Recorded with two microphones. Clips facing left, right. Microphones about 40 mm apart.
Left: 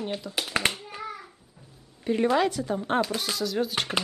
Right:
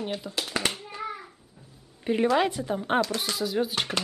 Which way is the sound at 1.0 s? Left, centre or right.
Centre.